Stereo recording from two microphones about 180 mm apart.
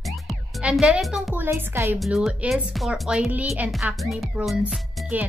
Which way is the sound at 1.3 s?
10° right (ahead or behind).